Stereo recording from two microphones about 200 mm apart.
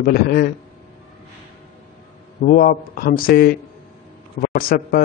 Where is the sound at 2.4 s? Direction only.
45° left (ahead or behind).